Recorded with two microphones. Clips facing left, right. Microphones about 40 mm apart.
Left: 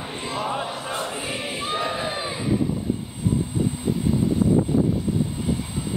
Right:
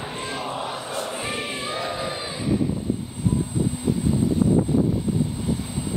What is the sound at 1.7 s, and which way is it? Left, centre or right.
Crowd, left.